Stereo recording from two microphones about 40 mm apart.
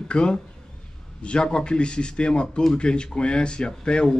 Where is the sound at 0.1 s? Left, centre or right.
Left.